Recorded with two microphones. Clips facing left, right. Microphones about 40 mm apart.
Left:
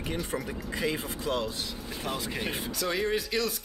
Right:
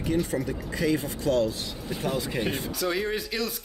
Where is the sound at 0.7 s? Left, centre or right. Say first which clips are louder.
Right 4 dB; centre.